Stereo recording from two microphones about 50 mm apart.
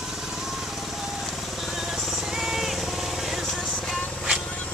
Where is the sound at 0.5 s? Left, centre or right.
Centre.